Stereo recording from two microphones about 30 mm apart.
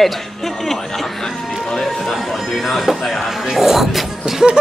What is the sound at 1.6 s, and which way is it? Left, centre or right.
Chatter, centre.